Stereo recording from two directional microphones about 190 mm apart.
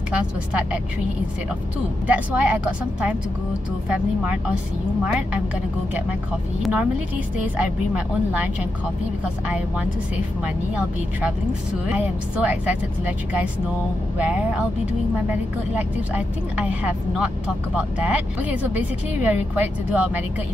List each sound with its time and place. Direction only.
0.1 s speech: 5° right (ahead or behind)
2.0 s speech: 10° right (ahead or behind)
6.6 s speech: 5° right (ahead or behind)
11.9 s speech: 5° right (ahead or behind)